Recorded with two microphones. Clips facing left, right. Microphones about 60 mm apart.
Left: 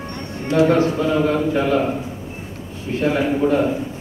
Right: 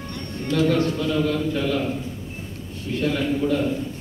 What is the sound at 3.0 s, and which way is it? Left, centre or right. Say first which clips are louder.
Speech: left 5 dB; left.